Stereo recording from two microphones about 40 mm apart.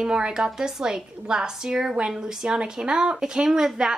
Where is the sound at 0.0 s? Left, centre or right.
Centre.